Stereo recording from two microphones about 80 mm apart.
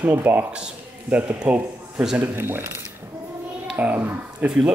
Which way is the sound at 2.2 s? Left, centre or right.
Right.